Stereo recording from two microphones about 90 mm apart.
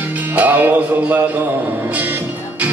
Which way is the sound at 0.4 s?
20° right (ahead or behind).